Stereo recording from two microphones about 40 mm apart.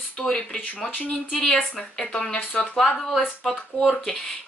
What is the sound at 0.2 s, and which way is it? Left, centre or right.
A woman's voice, centre.